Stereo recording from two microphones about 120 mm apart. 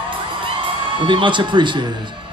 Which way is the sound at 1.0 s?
45° right (ahead or behind).